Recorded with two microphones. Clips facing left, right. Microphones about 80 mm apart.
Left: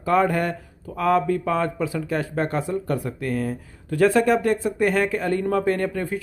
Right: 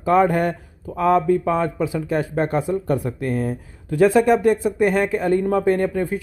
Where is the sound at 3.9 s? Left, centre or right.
Centre.